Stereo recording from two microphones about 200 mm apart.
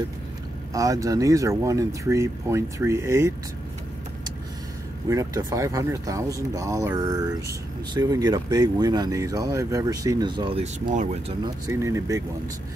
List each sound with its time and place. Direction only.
0.7 s speech: 15° right (ahead or behind)
5.1 s speech: 15° right (ahead or behind)
10.9 s speech: 35° right (ahead or behind)
11.4 s speech: 15° right (ahead or behind)